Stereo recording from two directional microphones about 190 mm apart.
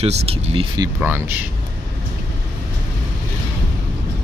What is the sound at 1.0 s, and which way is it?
Speech, 10° right (ahead or behind).